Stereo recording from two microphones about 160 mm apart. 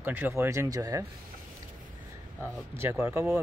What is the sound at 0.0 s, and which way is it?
Speech, 15° right (ahead or behind).